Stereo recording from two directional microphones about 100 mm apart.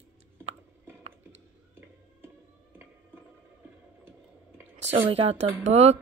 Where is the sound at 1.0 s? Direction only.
70° right (ahead or behind).